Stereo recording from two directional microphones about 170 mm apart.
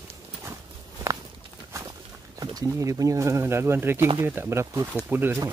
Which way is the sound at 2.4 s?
20° right (ahead or behind).